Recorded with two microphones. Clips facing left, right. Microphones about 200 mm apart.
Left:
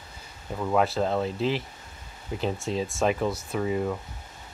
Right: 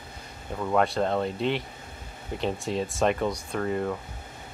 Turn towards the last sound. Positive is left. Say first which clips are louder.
# left 1 dB
turn(degrees=5)  # may be behind; listen again after turning